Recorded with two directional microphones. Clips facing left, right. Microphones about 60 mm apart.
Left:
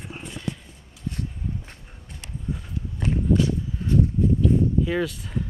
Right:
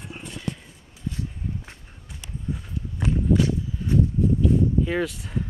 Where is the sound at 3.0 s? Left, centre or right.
Centre.